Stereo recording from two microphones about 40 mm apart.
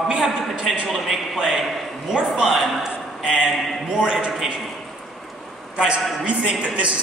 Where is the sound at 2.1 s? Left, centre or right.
Right.